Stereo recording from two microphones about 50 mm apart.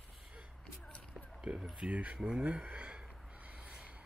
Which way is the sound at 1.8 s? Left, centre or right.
Right.